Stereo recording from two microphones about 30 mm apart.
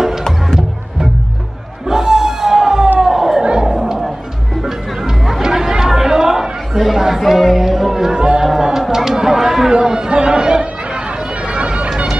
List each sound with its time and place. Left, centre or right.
1.9 s music: centre
3.0 s a sound: centre
3.4 s music: right
4.6 s music: centre
5.4 s chatter: right
6.7 s chatter: centre
7.2 s music: centre
8.0 s a sound: right
8.5 s music: centre
8.9 s chatter: centre
11.4 s bagpipes: right